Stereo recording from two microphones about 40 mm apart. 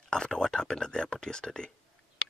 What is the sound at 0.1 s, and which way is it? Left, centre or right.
Speech, centre.